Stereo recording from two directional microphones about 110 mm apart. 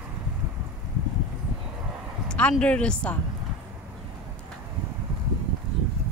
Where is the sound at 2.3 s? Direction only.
10° left (ahead or behind).